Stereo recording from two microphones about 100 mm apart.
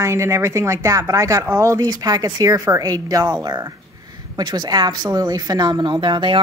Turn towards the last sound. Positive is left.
turn(degrees=-55)  # may be behind; listen again after turning